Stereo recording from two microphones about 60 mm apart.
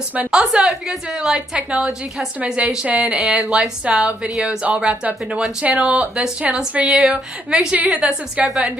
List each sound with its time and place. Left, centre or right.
0.3 s a woman's voice: centre